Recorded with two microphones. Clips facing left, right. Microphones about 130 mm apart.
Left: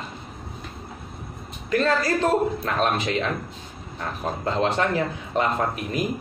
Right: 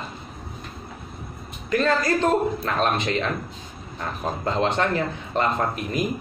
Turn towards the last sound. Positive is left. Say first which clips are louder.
# even
turn(degrees=5)  # may be behind; listen again after turning